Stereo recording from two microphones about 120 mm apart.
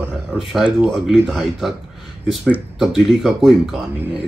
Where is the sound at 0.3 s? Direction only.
Centre (ahead or behind).